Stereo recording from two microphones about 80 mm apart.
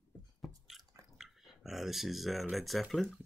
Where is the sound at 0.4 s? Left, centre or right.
Centre.